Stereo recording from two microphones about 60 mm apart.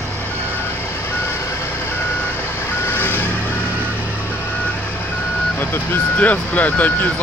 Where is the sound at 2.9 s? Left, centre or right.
Left.